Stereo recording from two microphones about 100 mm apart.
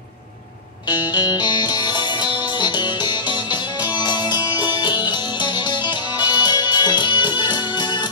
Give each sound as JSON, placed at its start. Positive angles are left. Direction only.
{"t": 0.8, "sound": "music", "side_deg": 45}